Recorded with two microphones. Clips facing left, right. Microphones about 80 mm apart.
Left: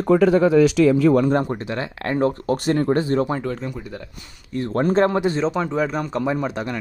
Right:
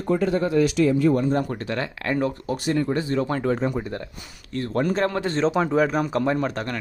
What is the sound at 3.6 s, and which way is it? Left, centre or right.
Speech, right.